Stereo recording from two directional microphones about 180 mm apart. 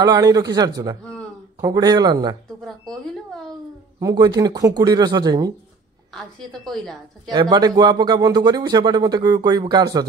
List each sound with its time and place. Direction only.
0.0 s speech: 20° right (ahead or behind)
2.6 s a woman's voice: 5° left (ahead or behind)
4.0 s speech: 20° right (ahead or behind)
6.1 s a woman's voice: centre (ahead or behind)
7.2 s speech: 25° right (ahead or behind)